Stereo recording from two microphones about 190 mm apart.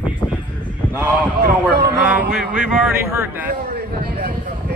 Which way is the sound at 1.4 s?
60° right (ahead or behind).